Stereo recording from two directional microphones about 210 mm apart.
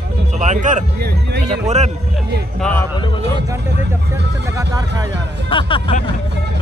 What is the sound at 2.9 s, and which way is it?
Speech, 20° left (ahead or behind).